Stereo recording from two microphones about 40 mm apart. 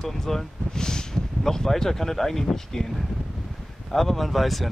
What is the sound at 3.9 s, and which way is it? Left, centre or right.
Speech, centre.